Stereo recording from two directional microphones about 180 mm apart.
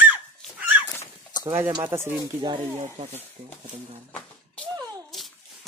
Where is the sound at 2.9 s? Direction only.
35° right (ahead or behind).